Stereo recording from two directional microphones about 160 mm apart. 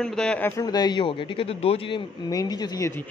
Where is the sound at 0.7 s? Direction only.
25° left (ahead or behind).